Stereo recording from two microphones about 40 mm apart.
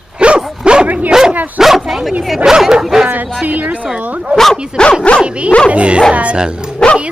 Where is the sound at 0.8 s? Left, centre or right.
Right.